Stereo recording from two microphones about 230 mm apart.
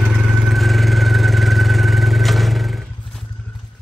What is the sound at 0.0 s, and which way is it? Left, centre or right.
Vehicle, centre.